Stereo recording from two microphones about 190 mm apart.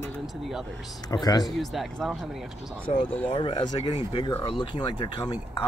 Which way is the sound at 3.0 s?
10° left (ahead or behind).